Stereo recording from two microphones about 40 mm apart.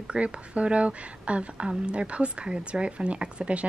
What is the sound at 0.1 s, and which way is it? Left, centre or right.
Speech, right.